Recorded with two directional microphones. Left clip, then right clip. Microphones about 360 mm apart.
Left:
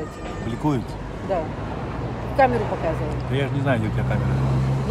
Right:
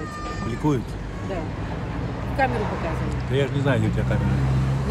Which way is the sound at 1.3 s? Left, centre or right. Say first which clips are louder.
Left 6 dB; left.